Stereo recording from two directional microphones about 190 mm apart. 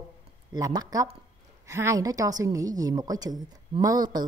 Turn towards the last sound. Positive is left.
turn(degrees=-20)  # may be behind; listen again after turning